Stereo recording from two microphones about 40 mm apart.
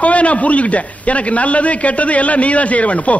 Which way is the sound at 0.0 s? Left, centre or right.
Left.